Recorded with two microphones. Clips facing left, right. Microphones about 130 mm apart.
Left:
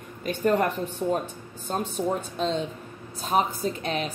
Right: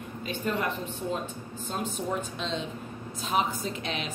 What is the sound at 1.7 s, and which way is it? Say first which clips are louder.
A woman's voice: left 5 dB; 45° left (ahead or behind).